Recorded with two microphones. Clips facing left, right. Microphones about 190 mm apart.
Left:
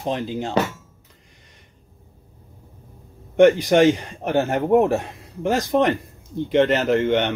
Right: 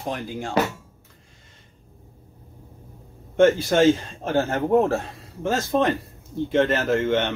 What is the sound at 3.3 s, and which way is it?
Speech, 15° left (ahead or behind).